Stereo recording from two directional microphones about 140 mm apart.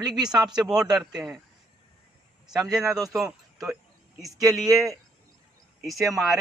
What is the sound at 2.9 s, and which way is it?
Speech, 25° right (ahead or behind).